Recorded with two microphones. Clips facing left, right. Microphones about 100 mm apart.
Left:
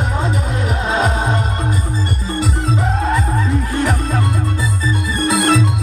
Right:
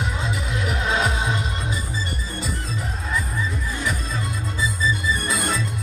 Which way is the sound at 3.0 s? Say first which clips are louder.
Left 9 dB; 75° left (ahead or behind).